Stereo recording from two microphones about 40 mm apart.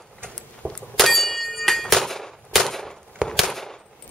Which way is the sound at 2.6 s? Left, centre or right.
Centre.